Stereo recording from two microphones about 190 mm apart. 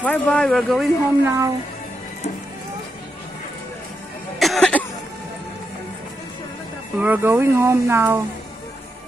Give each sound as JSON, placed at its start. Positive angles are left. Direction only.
{"t": 0.0, "sound": "speech", "side_deg": 5}
{"t": 1.2, "sound": "speech", "side_deg": -15}
{"t": 4.4, "sound": "cough", "side_deg": 0}
{"t": 7.0, "sound": "speech", "side_deg": -10}